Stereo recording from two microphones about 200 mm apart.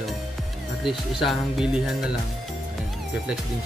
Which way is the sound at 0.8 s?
Centre (ahead or behind).